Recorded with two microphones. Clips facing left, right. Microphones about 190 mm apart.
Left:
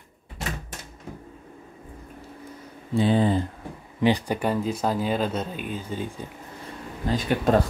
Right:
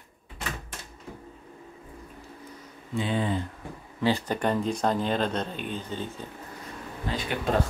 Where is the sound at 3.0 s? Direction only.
35° left (ahead or behind).